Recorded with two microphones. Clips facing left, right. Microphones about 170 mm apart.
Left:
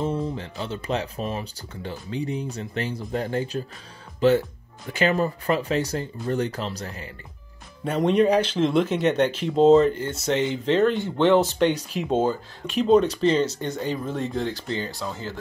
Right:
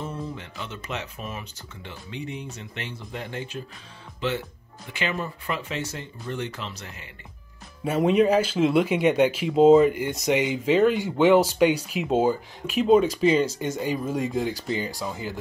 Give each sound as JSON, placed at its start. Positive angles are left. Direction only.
{"t": 0.0, "sound": "speech", "side_deg": 30}
{"t": 7.8, "sound": "speech", "side_deg": -5}